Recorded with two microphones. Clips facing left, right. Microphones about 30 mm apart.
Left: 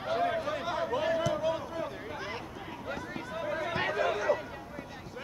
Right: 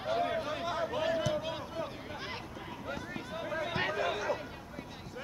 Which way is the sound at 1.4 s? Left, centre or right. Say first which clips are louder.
Left 5 dB; right.